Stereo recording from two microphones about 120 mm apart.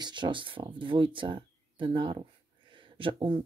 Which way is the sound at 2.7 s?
45° right (ahead or behind).